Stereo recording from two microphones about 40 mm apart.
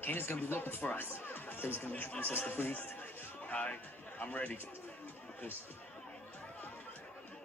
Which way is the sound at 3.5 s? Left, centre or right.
Left.